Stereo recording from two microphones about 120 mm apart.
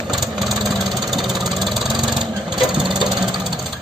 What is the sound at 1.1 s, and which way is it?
Engine, centre (ahead or behind).